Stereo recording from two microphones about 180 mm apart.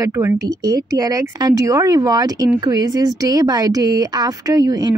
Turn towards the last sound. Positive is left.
turn(degrees=-20)  # may be behind; listen again after turning